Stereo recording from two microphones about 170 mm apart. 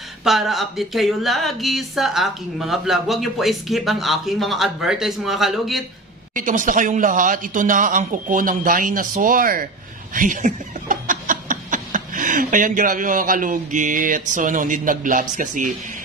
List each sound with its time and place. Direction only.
0.2 s speech: centre (ahead or behind)
6.3 s a man's voice: 50° right (ahead or behind)